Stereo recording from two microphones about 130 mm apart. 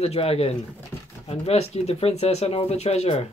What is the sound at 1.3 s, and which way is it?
Speech, 55° left (ahead or behind).